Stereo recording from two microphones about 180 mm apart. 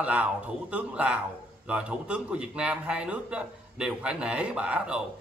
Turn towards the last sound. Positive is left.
turn(degrees=-5)  # may be behind; listen again after turning